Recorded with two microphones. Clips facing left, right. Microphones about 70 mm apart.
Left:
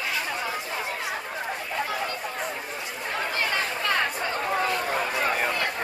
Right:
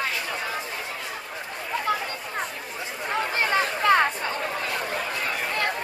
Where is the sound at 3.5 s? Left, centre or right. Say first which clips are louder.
Right 10 dB; right.